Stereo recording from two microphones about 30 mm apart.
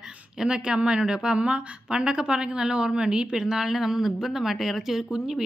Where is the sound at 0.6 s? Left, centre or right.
Right.